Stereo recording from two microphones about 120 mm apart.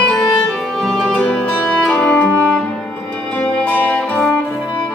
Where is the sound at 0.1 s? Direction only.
5° left (ahead or behind).